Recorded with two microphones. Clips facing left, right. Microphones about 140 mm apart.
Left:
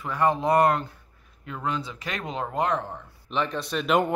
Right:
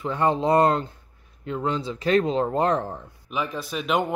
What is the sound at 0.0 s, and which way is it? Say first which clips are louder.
Speech: right 1 dB; 25° right (ahead or behind).